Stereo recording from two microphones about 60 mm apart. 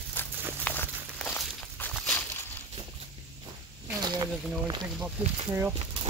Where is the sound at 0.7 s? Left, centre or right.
Left.